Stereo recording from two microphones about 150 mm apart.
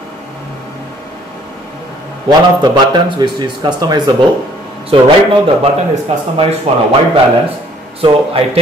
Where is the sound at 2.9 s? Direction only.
30° right (ahead or behind).